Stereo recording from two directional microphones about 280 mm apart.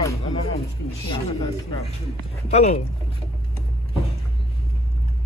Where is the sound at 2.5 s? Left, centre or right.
Left.